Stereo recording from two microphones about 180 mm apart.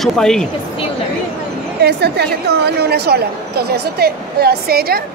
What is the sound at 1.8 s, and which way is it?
A woman's voice, 65° right (ahead or behind).